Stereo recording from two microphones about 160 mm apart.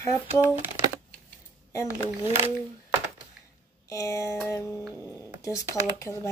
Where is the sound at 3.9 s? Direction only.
20° left (ahead or behind).